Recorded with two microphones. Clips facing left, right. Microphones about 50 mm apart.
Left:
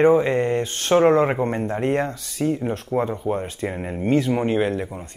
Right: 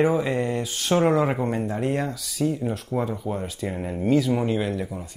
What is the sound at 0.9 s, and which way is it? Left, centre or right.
Speech, left.